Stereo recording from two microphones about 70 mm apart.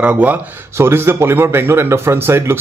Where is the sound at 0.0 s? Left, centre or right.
Right.